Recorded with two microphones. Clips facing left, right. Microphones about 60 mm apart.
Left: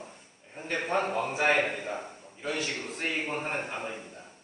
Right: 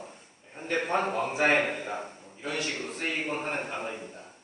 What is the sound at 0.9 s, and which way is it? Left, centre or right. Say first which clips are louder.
Speech: even; centre.